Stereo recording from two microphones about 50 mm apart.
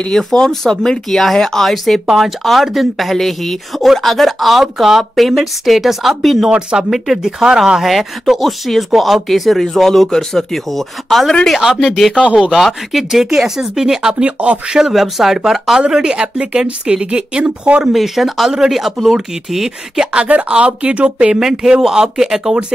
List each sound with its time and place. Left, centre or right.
0.1 s speech: centre
2.0 s speech: centre
6.5 s speech: centre
14.2 s speech: right
14.8 s speech: centre; by 17.8 s right
17.9 s speech: centre
20.2 s speech: right